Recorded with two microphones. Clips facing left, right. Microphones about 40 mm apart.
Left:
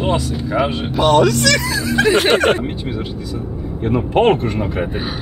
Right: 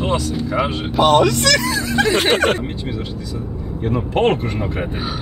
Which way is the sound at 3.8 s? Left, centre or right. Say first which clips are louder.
Left 3 dB; centre.